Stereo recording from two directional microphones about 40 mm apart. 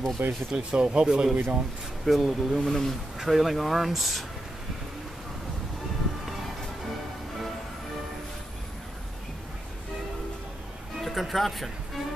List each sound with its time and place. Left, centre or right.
0.2 s speech: right
0.6 s speech: right
1.3 s speech: right
2.0 s speech: centre
2.6 s speech: centre
3.2 s speech: centre
11.0 s music: centre